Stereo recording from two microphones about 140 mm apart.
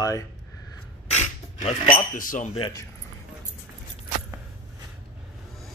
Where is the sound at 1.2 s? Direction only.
55° left (ahead or behind).